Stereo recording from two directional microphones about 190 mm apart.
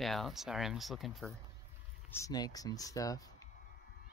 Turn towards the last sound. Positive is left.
turn(degrees=20)  # may be behind; listen again after turning